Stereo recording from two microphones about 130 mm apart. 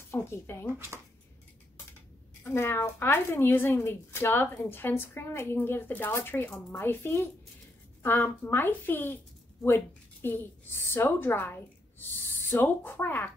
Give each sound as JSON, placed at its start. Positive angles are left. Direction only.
{"t": 0.1, "sound": "speech", "side_deg": 20}
{"t": 2.4, "sound": "speech", "side_deg": 20}